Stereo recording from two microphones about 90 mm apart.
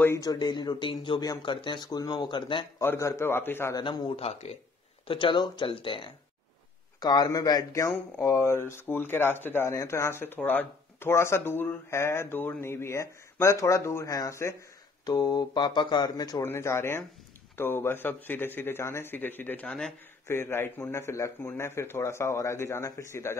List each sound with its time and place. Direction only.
0.2 s speech: 50° left (ahead or behind)
2.8 s speech: 30° left (ahead or behind)
3.8 s speech: 55° left (ahead or behind)
5.0 s speech: 70° left (ahead or behind)
7.0 s a man's voice: 50° left (ahead or behind); by 9.7 s 25° left (ahead or behind)
9.7 s speech: 35° left (ahead or behind)
15.0 s speech: 45° left (ahead or behind)
16.4 s speech: 30° left (ahead or behind); by 19.9 s 15° left (ahead or behind)
20.2 s speech: 25° left (ahead or behind)